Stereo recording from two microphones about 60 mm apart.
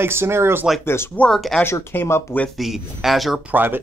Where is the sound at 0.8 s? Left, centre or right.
Left.